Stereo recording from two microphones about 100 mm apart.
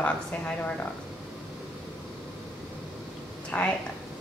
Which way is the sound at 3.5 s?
15° left (ahead or behind).